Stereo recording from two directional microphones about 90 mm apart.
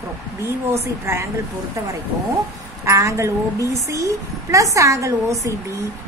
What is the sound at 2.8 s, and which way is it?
A woman's voice, 35° right (ahead or behind).